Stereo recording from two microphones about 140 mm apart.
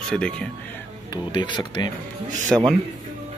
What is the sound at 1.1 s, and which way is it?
Speech, 35° left (ahead or behind).